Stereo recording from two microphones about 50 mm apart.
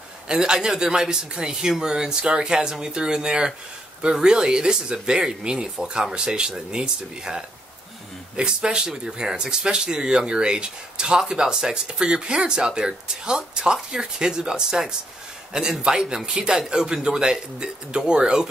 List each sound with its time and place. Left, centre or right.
0.3 s speech: centre